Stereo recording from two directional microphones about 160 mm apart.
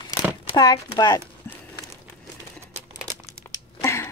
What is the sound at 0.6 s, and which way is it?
Speech, 25° left (ahead or behind).